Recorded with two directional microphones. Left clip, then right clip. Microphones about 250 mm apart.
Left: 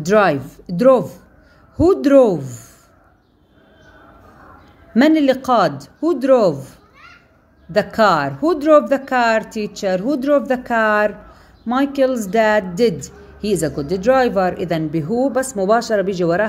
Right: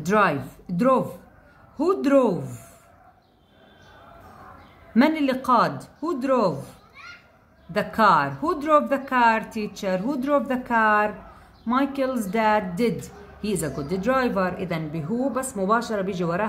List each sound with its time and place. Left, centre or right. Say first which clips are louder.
0.0 s speech: left 6 dB; centre
4.9 s speech: left 8 dB; centre
7.7 s speech: left 4 dB; centre